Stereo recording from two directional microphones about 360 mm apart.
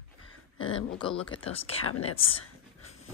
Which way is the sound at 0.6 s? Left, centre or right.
Left.